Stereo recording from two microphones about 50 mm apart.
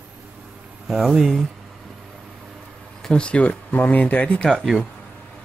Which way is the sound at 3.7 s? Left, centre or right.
Left.